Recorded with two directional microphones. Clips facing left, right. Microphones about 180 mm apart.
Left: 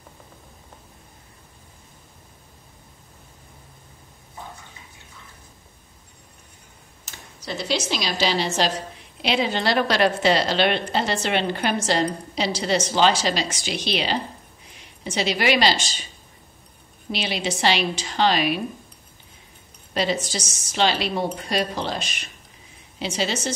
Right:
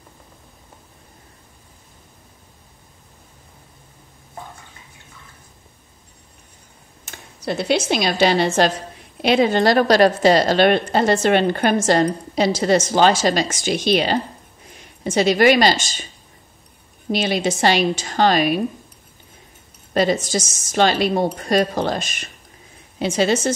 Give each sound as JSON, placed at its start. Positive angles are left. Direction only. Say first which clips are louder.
{"t": 7.1, "sound": "a woman's voice", "louder": "right 8 dB", "side_deg": -55}
{"t": 17.1, "sound": "a woman's voice", "louder": "right 7 dB", "side_deg": -45}
{"t": 19.9, "sound": "a woman's voice", "louder": "right 6 dB", "side_deg": -50}